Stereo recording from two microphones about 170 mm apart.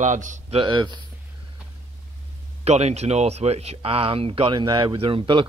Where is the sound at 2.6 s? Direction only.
40° right (ahead or behind).